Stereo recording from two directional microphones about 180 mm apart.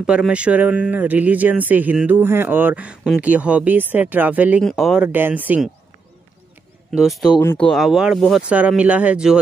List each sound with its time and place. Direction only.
0.0 s speech: 5° right (ahead or behind)
6.9 s speech: centre (ahead or behind)
7.3 s speech: 25° left (ahead or behind)
7.6 s speech: centre (ahead or behind)